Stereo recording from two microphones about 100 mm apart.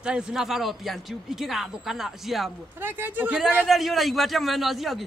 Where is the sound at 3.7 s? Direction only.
Centre (ahead or behind).